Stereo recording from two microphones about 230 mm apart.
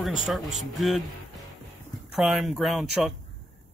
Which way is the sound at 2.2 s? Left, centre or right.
Centre.